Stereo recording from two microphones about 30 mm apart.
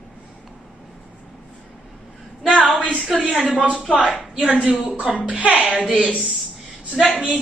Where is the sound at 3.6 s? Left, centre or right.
Right.